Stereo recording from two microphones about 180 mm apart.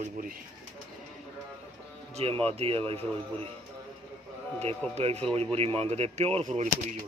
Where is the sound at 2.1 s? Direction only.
35° right (ahead or behind).